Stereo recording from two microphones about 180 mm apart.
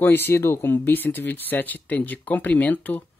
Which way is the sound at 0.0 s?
10° left (ahead or behind).